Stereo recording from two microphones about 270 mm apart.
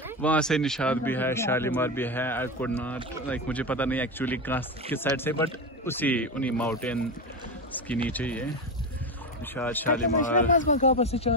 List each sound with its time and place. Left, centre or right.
0.2 s speech: centre
8.1 s speech: centre
9.5 s speech: centre
9.8 s speech: left